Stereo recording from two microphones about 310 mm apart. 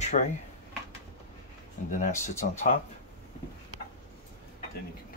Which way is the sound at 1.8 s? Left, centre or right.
Left.